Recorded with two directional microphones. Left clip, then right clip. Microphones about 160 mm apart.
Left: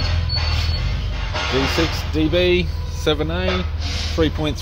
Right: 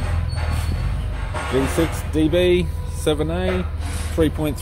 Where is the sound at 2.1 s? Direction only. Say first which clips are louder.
Even; 30° right (ahead or behind).